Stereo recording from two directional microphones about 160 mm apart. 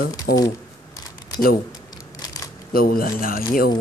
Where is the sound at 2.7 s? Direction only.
65° left (ahead or behind).